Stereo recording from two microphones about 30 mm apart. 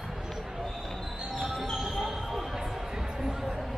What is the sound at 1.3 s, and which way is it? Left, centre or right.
Basketball bounce, centre.